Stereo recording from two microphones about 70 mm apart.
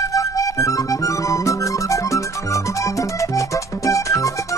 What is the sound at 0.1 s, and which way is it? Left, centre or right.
Music, left.